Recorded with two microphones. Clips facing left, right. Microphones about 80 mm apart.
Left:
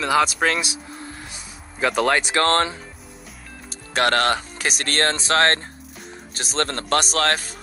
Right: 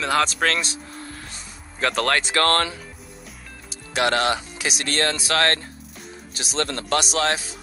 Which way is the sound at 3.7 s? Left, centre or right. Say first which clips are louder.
Left 1 dB; left.